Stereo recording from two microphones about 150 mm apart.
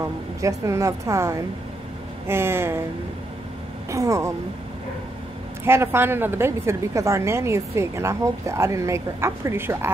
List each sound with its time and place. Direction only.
0.0 s a woman's voice: 20° right (ahead or behind)
3.9 s a woman's voice: 20° right (ahead or behind)
5.7 s a woman's voice: 15° right (ahead or behind)